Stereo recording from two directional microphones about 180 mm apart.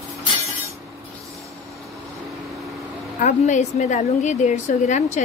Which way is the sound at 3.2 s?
40° left (ahead or behind).